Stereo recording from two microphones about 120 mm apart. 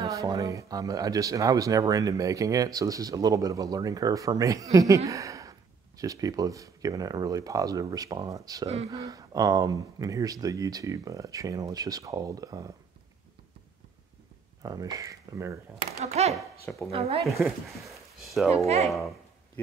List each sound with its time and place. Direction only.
0.0 s speech: 30° right (ahead or behind)
14.6 s speech: 30° right (ahead or behind)
16.0 s speech: 65° right (ahead or behind)
17.2 s speech: centre (ahead or behind)